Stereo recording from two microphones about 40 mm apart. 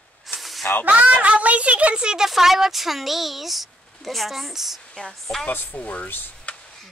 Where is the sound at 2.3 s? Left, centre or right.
Centre.